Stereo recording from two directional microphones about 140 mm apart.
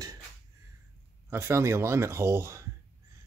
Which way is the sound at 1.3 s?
20° right (ahead or behind).